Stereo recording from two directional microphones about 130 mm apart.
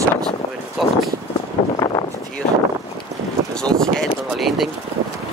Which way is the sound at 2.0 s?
25° left (ahead or behind).